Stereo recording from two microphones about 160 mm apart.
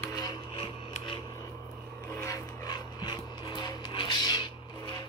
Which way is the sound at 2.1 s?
15° left (ahead or behind).